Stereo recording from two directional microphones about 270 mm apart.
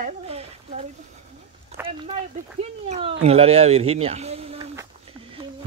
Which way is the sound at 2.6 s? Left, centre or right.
Right.